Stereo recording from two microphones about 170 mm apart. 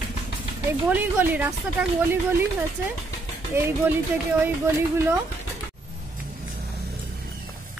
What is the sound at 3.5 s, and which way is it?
Speech, 15° right (ahead or behind).